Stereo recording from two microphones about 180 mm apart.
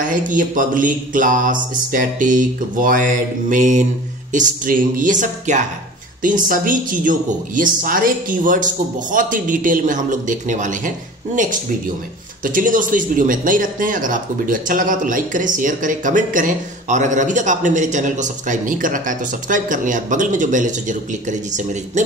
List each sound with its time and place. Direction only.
0.0 s speech: 45° right (ahead or behind)
12.4 s speech: 50° right (ahead or behind)